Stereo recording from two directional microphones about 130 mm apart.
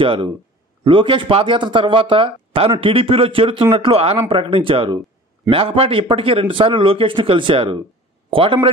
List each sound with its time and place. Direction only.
0.0 s a man's voice: 40° right (ahead or behind)